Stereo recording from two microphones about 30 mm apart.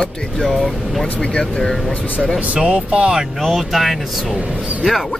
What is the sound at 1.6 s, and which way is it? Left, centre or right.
Speech, centre.